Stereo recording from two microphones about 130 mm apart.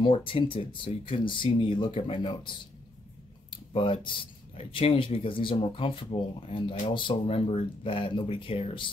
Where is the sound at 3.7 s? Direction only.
40° left (ahead or behind).